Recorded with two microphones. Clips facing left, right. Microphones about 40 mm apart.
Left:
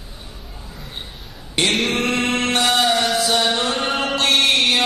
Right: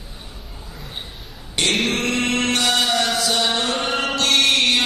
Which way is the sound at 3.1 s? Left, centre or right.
Centre.